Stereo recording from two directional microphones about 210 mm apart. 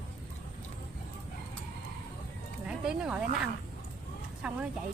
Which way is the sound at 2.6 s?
5° right (ahead or behind).